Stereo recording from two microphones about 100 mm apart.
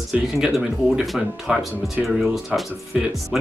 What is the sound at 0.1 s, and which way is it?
Speech, 5° right (ahead or behind).